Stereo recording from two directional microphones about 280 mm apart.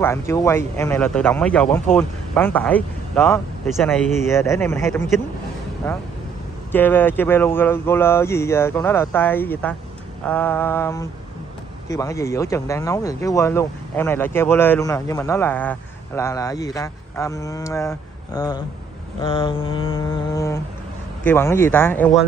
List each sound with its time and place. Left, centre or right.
0.0 s speech: centre